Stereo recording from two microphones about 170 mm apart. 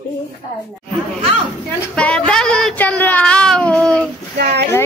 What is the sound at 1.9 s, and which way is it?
Speech, 5° left (ahead or behind).